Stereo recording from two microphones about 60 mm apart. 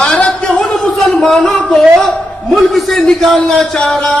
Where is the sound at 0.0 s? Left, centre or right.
Centre.